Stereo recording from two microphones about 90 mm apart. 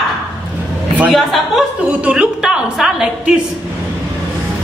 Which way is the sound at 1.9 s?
10° right (ahead or behind).